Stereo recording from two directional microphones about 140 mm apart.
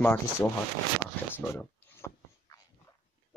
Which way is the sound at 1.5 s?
20° left (ahead or behind).